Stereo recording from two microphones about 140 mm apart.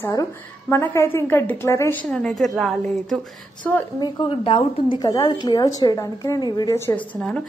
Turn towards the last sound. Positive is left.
turn(degrees=10)  # may be behind; listen again after turning